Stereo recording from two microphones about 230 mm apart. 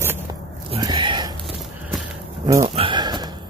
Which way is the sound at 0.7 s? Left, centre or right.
Centre.